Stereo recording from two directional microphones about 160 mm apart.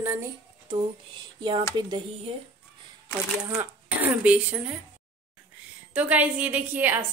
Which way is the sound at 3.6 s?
10° right (ahead or behind).